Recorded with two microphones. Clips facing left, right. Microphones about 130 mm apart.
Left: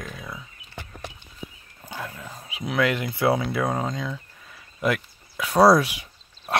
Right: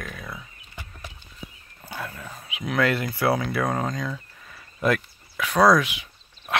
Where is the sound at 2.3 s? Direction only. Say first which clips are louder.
Even; 35° left (ahead or behind).